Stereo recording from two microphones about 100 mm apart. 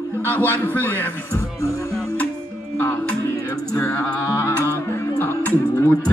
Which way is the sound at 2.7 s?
20° left (ahead or behind).